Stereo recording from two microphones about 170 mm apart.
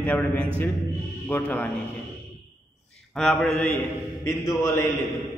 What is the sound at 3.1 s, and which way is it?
Mantra, 5° left (ahead or behind).